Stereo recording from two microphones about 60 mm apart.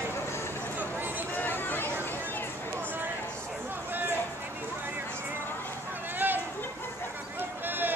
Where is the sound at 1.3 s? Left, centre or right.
Left.